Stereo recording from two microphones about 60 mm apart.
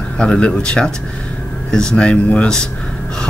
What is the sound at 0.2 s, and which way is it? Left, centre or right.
Speech, centre.